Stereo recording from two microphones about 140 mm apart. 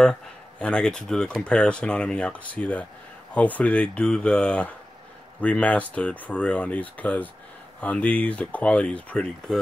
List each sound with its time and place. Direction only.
0.0 s speech: 5° left (ahead or behind)